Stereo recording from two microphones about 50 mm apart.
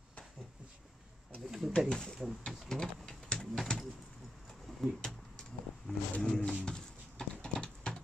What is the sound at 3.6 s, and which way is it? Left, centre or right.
Bird, centre.